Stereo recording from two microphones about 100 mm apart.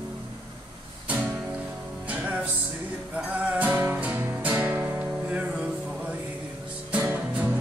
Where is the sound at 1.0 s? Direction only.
15° right (ahead or behind).